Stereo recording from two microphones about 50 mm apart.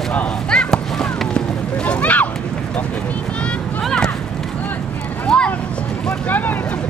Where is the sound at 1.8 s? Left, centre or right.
Left.